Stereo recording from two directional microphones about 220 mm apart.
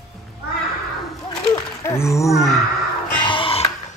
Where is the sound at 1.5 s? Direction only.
15° left (ahead or behind).